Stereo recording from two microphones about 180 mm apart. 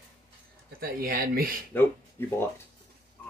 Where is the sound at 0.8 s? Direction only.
55° right (ahead or behind).